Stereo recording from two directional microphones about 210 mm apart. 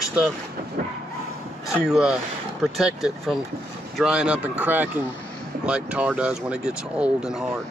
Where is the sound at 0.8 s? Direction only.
40° right (ahead or behind).